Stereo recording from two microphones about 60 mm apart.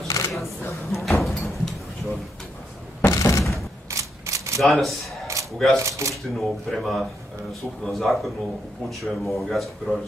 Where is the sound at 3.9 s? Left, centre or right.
Right.